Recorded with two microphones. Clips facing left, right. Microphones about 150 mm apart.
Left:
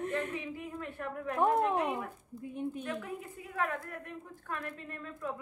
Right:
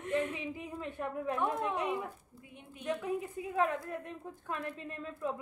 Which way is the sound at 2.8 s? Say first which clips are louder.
Right 4 dB; 20° right (ahead or behind).